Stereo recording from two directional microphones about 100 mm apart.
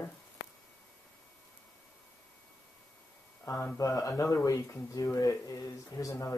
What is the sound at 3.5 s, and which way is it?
Speech, 30° left (ahead or behind).